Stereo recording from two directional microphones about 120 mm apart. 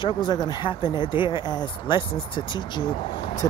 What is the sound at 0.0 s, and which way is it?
Speech, 40° left (ahead or behind).